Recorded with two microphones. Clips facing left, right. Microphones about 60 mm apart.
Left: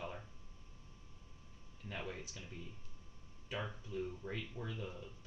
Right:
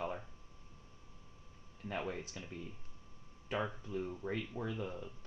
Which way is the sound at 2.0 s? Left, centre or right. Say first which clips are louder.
Right 5 dB; right.